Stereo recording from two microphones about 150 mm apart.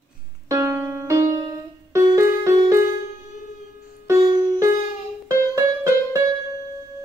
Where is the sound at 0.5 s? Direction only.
20° right (ahead or behind).